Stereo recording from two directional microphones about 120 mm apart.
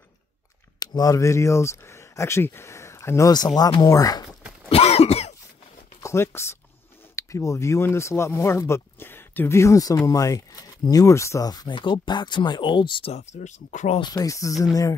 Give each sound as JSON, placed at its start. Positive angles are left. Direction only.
{"t": 0.7, "sound": "speech", "side_deg": 30}
{"t": 4.6, "sound": "cough", "side_deg": 55}
{"t": 6.0, "sound": "speech", "side_deg": 20}
{"t": 13.1, "sound": "speech", "side_deg": 75}
{"t": 14.1, "sound": "speech", "side_deg": 30}